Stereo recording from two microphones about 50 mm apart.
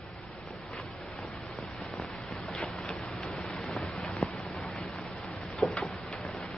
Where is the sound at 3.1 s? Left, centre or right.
Centre.